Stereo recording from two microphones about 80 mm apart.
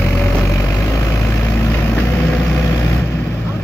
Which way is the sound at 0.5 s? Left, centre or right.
Left.